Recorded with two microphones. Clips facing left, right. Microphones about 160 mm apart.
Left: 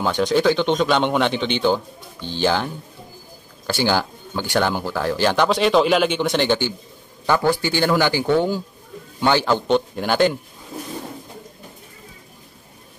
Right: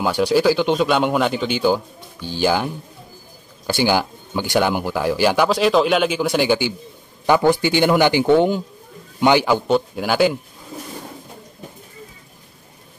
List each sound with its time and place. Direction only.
0.0 s speech: 10° right (ahead or behind)